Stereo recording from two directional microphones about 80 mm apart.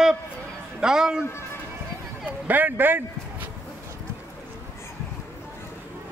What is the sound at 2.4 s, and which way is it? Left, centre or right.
Speech, right.